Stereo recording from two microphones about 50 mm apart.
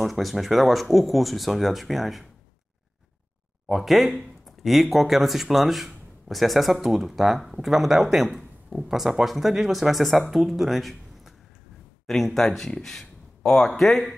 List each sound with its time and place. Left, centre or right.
0.0 s speech: centre
3.6 s speech: centre